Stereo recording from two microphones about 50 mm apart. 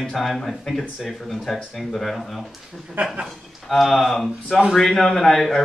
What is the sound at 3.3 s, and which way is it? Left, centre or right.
Speech, centre.